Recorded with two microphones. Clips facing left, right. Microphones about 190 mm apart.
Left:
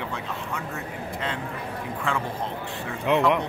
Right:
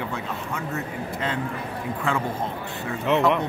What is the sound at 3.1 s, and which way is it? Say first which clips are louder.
Speech: even; 15° left (ahead or behind).